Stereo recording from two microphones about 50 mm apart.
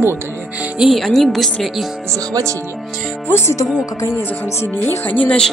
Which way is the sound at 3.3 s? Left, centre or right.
Left.